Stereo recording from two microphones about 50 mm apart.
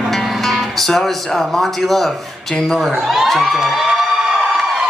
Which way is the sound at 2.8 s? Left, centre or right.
Centre.